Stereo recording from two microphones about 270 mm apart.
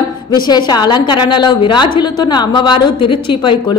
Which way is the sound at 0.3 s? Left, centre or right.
Centre.